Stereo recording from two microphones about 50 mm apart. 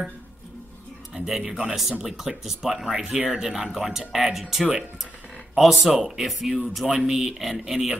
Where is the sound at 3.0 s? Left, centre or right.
Right.